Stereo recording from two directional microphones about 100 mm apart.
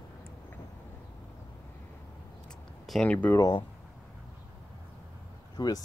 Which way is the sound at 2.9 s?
10° left (ahead or behind).